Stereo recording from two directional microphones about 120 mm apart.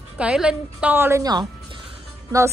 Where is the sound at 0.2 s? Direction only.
5° right (ahead or behind).